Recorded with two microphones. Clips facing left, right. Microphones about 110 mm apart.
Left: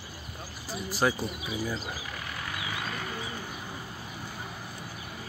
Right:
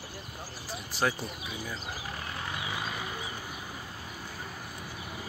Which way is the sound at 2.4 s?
20° right (ahead or behind).